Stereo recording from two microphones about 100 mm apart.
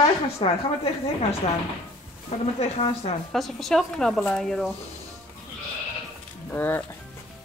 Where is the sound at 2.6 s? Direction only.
90° left.